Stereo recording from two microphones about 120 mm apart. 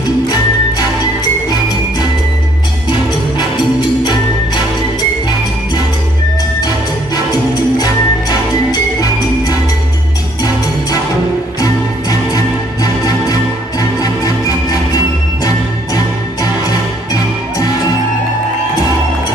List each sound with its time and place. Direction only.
7.8 s music: 30° left (ahead or behind)
11.6 s music: 30° left (ahead or behind)